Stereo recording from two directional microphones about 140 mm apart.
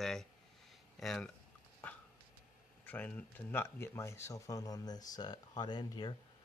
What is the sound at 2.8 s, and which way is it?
Speech, 10° left (ahead or behind).